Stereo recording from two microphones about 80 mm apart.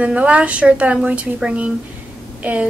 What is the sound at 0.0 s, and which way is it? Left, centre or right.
A woman's voice, centre.